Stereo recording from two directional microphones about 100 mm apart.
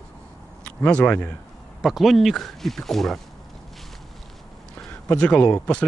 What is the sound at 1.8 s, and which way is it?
Speech, 5° right (ahead or behind).